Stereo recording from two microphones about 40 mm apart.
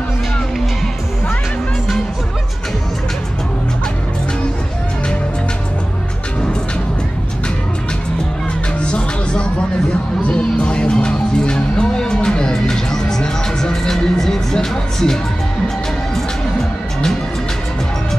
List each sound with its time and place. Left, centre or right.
8.8 s music: left